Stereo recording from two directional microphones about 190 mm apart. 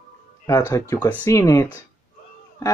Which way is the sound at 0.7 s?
15° left (ahead or behind).